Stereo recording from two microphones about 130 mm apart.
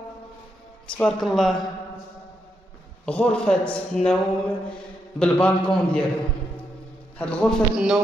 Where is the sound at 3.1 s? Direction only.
10° left (ahead or behind).